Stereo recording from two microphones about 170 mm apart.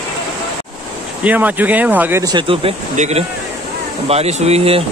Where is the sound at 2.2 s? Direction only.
30° right (ahead or behind).